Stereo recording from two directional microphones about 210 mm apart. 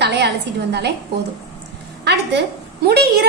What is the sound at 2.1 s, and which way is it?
A woman's voice, 50° right (ahead or behind).